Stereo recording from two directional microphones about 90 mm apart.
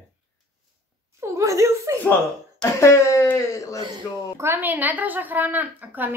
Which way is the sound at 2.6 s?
35° left (ahead or behind).